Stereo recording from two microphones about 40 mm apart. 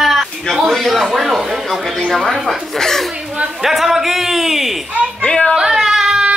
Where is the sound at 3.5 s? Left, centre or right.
Centre.